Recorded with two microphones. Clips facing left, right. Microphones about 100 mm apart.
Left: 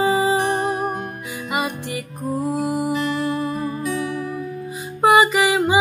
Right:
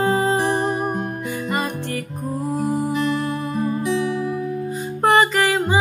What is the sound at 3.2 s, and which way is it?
Music, 30° right (ahead or behind).